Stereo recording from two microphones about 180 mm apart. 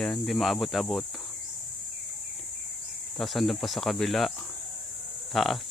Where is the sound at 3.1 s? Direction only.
Centre (ahead or behind).